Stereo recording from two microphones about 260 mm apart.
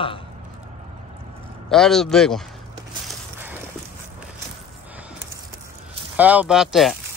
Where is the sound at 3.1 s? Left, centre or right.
Centre.